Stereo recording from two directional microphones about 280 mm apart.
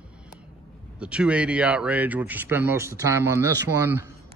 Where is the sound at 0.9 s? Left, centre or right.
Centre.